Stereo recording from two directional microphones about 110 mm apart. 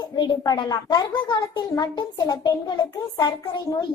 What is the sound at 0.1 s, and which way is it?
A child's voice, 40° left (ahead or behind).